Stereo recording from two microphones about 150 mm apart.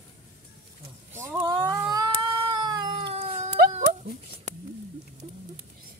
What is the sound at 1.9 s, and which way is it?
Cat, 25° right (ahead or behind).